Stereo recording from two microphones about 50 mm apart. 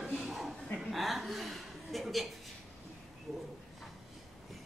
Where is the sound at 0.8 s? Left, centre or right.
Centre.